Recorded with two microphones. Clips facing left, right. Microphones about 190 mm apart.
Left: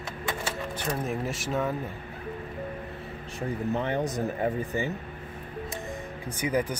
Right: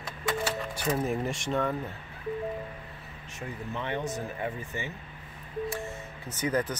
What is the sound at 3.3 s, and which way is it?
Speech, 40° left (ahead or behind).